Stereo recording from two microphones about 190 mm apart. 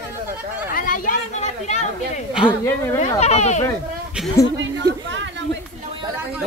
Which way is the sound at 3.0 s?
35° left (ahead or behind).